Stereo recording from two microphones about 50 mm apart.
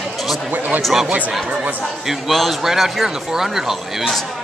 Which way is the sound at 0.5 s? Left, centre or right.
Right.